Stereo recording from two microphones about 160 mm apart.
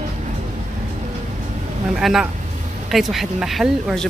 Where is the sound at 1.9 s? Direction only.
Centre (ahead or behind).